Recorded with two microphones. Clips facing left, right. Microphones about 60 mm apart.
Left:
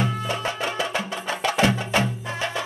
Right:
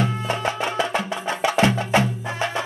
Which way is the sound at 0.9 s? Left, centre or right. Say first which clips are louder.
Right 3 dB; centre.